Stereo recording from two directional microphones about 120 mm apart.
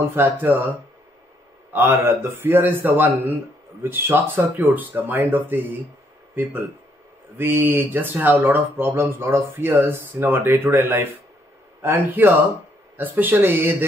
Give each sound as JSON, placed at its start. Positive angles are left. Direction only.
{"t": 0.0, "sound": "speech", "side_deg": -15}
{"t": 1.7, "sound": "speech", "side_deg": -20}